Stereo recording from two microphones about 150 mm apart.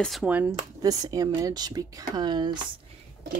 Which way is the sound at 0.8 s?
25° right (ahead or behind).